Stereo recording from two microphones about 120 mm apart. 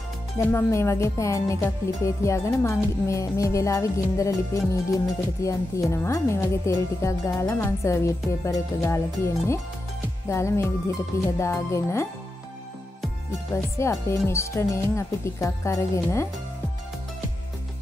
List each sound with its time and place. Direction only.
0.4 s speech: 20° left (ahead or behind)
13.7 s speech: 25° left (ahead or behind)